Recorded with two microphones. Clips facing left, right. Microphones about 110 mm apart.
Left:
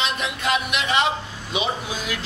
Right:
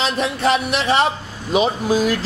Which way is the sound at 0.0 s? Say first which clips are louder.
Right 6 dB; 35° right (ahead or behind).